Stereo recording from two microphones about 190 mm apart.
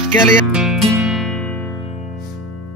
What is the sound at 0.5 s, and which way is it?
Music, centre (ahead or behind).